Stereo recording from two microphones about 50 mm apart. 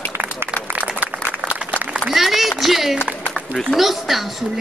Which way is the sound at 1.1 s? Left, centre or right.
Right.